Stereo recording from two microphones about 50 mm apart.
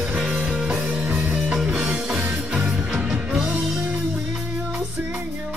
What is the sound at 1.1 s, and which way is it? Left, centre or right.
Music, right.